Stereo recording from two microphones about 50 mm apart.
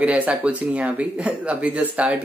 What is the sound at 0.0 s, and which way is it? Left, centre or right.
Speech, right.